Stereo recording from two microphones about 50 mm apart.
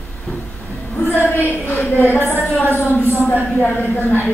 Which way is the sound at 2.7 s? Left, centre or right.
Left.